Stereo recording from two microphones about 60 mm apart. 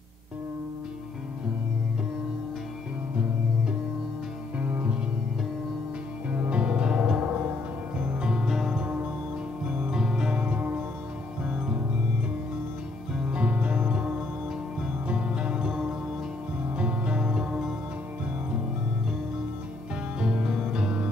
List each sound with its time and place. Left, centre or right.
4.6 s music: right
6.3 s music: right
8.8 s music: right
13.2 s music: centre
20.2 s music: centre